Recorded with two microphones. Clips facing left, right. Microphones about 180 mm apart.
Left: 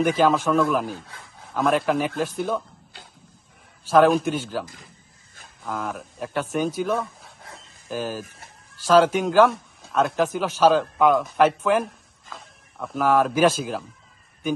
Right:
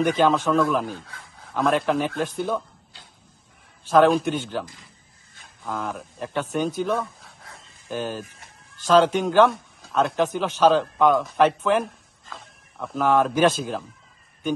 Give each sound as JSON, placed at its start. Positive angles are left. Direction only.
{"t": 0.0, "sound": "a man's voice", "side_deg": 0}
{"t": 3.9, "sound": "a man's voice", "side_deg": 0}
{"t": 5.7, "sound": "a man's voice", "side_deg": 0}